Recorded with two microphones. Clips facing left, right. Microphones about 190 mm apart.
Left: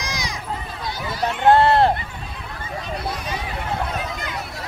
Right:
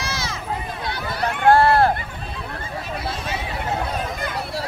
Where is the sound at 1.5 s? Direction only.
20° left (ahead or behind).